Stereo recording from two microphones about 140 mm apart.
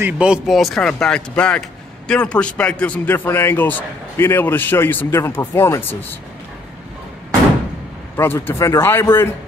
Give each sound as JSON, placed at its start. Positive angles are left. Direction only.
{"t": 0.0, "sound": "speech", "side_deg": -5}
{"t": 8.2, "sound": "speech", "side_deg": 15}